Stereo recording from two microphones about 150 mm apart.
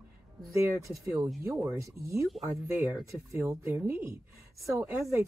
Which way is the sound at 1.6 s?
15° right (ahead or behind).